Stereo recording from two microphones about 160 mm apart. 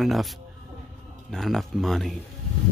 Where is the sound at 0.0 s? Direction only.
Centre (ahead or behind).